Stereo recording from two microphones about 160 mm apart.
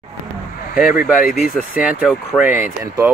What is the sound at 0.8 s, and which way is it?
Speech, 5° right (ahead or behind).